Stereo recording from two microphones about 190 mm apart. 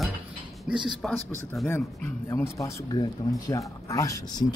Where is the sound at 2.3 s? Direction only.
15° left (ahead or behind).